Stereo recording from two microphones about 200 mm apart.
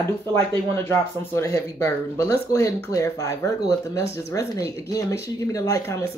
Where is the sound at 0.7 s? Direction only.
10° left (ahead or behind).